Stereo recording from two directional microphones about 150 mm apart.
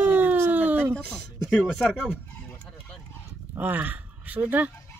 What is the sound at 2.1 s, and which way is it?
Chicken, 15° left (ahead or behind).